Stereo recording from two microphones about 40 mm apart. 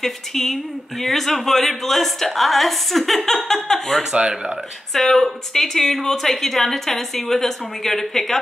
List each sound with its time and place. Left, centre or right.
0.0 s a woman's voice: centre
4.1 s speech: right
4.9 s a woman's voice: centre